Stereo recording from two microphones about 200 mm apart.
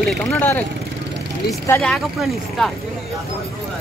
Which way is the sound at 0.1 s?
5° left (ahead or behind).